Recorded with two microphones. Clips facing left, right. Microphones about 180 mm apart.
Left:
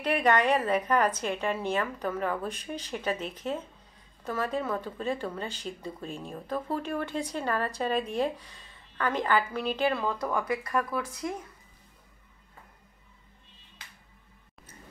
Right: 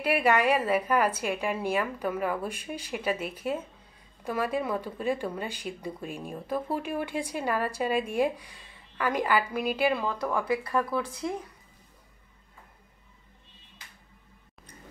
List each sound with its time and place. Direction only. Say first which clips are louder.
0.0 s speech: right 1 dB; 10° right (ahead or behind)